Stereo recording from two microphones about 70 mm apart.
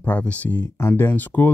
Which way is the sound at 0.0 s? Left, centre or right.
Centre.